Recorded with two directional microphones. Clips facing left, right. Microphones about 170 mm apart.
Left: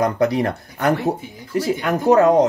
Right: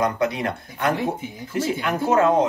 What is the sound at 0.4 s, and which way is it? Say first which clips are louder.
Speech: left 4 dB; 40° left (ahead or behind).